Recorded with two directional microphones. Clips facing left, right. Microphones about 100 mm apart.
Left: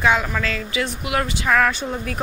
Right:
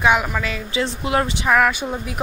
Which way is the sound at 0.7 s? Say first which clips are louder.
Right 6 dB; 25° right (ahead or behind).